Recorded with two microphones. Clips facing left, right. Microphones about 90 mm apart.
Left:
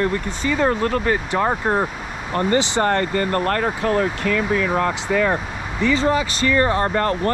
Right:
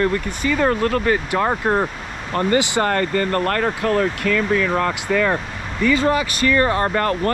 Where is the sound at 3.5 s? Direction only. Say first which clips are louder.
Even; 20° left (ahead or behind).